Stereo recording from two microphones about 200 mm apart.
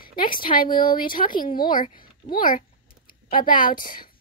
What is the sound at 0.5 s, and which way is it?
Speech, 45° left (ahead or behind).